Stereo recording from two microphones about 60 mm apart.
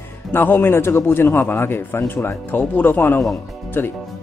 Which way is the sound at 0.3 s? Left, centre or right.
Left.